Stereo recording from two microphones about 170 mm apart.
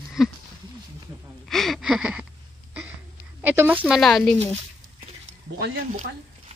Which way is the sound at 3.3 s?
10° right (ahead or behind).